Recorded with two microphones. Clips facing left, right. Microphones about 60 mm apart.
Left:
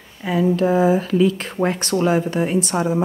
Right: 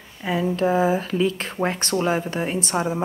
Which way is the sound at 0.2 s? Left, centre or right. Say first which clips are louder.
Left 4 dB; centre.